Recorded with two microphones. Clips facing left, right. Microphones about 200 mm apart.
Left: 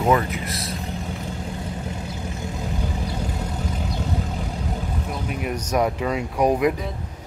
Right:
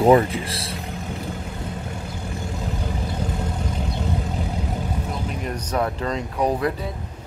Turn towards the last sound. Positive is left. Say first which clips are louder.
# left 3 dB
turn(degrees=15)  # may be behind; listen again after turning